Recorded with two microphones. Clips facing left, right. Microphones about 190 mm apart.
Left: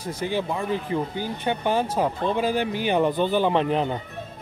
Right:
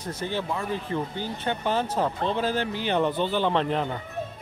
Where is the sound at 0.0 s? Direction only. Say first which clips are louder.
Left 3 dB; 10° left (ahead or behind).